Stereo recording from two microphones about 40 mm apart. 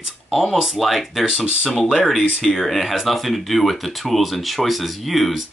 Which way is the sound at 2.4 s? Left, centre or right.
Centre.